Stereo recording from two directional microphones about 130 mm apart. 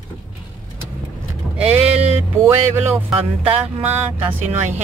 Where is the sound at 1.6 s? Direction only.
10° right (ahead or behind).